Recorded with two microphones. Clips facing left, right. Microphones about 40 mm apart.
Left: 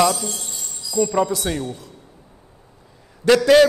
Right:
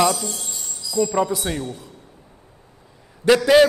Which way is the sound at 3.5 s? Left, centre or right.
Centre.